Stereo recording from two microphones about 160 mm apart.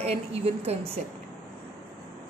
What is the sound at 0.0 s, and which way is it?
Speech, 40° right (ahead or behind).